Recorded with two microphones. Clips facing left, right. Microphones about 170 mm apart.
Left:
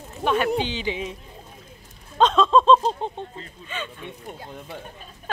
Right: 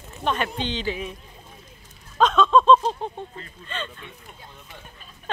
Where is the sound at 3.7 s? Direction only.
10° left (ahead or behind).